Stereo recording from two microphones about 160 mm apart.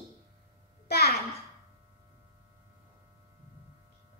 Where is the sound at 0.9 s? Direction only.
85° left.